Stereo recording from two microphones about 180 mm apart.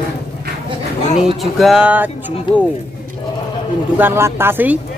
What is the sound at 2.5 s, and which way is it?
Speech, 25° left (ahead or behind).